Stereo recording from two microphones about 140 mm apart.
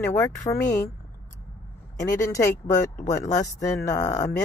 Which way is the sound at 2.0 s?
20° left (ahead or behind).